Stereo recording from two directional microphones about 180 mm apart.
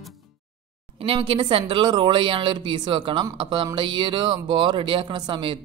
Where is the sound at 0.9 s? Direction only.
30° right (ahead or behind).